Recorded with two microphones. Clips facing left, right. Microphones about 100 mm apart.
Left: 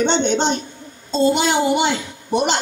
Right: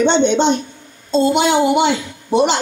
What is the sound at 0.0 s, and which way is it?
A woman's voice, 65° right (ahead or behind).